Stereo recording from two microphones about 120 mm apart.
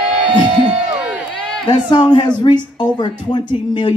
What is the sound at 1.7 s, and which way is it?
Speech, 40° left (ahead or behind).